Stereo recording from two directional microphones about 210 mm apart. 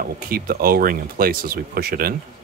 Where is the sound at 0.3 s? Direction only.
45° right (ahead or behind).